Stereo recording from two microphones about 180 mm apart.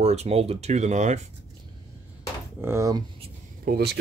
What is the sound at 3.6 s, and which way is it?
Speech, 60° right (ahead or behind).